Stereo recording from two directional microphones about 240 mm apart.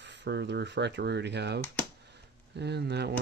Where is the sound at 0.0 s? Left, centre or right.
Right.